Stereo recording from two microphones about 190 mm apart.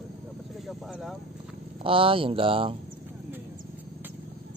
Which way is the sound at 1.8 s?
30° right (ahead or behind).